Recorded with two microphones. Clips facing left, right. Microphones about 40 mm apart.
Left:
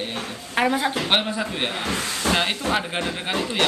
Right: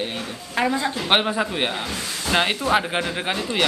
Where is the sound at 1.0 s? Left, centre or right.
Centre.